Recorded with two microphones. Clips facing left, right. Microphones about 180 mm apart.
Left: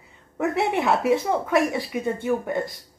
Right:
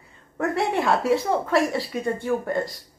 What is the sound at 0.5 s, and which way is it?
A woman's voice, 20° left (ahead or behind).